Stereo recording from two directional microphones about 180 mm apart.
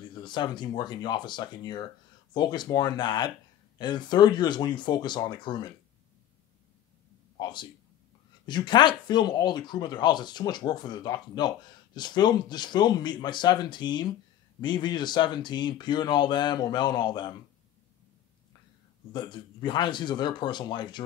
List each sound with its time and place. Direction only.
0.1 s speech: 25° left (ahead or behind)
7.3 s a man's voice: 25° left (ahead or behind)
19.1 s speech: 25° left (ahead or behind)